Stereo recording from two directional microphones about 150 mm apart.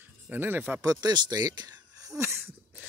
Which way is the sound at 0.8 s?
25° right (ahead or behind).